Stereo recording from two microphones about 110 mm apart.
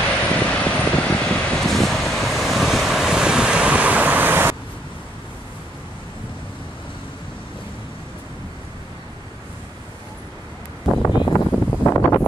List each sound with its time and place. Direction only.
0.2 s vehicle: 10° left (ahead or behind); by 4.6 s 20° right (ahead or behind)
11.2 s wind noise: 30° left (ahead or behind)